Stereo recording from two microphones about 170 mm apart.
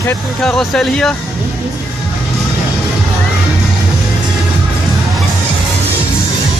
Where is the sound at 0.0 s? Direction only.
10° left (ahead or behind).